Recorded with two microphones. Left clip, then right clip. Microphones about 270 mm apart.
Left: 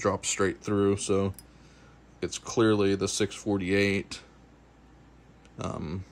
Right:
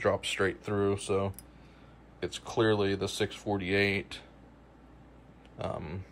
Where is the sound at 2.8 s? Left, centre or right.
Centre.